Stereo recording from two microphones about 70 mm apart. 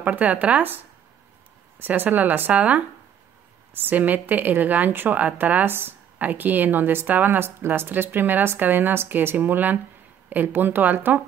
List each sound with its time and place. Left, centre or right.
0.0 s a woman's voice: right
1.8 s a woman's voice: right